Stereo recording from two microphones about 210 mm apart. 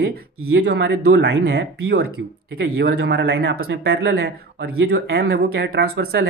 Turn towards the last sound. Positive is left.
turn(degrees=-50)  # may be behind; listen again after turning